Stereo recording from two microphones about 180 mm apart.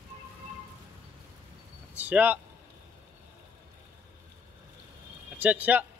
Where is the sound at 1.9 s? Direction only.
10° right (ahead or behind).